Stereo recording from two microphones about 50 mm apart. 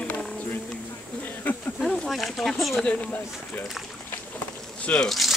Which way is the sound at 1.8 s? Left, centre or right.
Centre.